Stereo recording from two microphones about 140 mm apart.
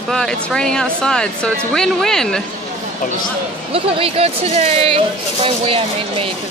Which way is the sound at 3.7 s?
45° right (ahead or behind).